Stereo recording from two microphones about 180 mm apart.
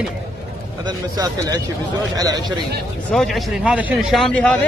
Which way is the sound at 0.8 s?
20° right (ahead or behind).